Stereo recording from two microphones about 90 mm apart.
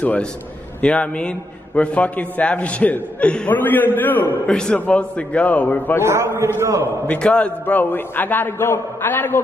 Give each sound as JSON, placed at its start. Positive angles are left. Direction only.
{"t": 0.0, "sound": "a man's voice", "side_deg": 15}
{"t": 4.5, "sound": "a man's voice", "side_deg": 10}
{"t": 5.9, "sound": "a man's voice", "side_deg": -30}
{"t": 7.1, "sound": "a man's voice", "side_deg": 10}